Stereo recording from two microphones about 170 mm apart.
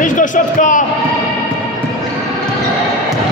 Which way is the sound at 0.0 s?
50° left (ahead or behind).